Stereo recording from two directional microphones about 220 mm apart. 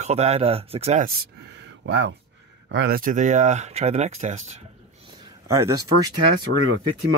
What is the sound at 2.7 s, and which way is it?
Speech, 45° right (ahead or behind).